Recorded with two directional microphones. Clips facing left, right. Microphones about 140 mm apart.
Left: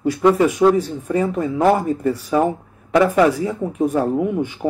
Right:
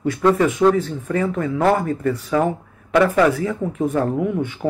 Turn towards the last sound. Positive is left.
turn(degrees=20)  # may be behind; listen again after turning